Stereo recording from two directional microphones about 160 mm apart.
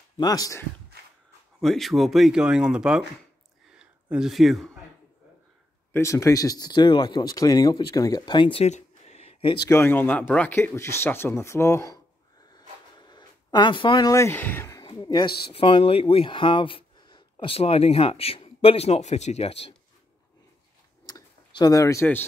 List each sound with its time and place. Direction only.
0.2 s speech: 25° left (ahead or behind)
1.6 s speech: centre (ahead or behind)
5.9 s speech: 20° left (ahead or behind)
9.7 s speech: 15° left (ahead or behind)
12.5 s a sound: 25° left (ahead or behind)
14.9 s a sound: 30° left (ahead or behind)
15.5 s speech: 35° left (ahead or behind)
21.5 s speech: 25° left (ahead or behind)